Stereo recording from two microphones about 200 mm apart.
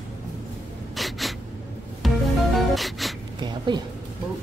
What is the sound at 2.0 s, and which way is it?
Music, centre (ahead or behind).